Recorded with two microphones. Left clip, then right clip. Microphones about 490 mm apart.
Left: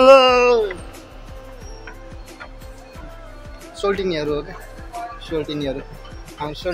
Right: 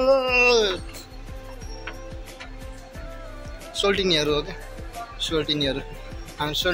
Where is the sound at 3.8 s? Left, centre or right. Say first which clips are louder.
Even; right.